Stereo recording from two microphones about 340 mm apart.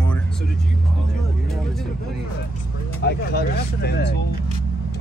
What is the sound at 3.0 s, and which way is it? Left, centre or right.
Speech, left.